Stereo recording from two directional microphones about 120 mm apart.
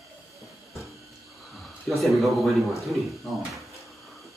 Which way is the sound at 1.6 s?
Centre (ahead or behind).